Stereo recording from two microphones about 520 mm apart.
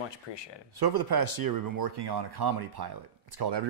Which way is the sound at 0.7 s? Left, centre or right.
Right.